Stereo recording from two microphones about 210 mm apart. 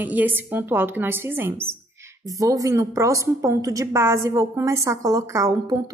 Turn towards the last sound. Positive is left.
turn(degrees=-15)  # may be behind; listen again after turning